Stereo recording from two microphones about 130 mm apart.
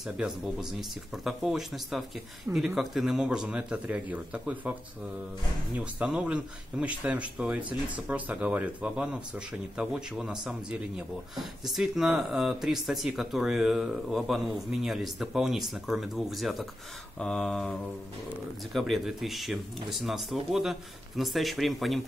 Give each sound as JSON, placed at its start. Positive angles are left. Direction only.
{"t": 0.0, "sound": "speech", "side_deg": -5}
{"t": 5.8, "sound": "speech", "side_deg": -10}